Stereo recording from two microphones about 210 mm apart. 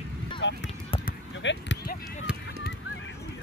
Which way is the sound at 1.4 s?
60° left (ahead or behind).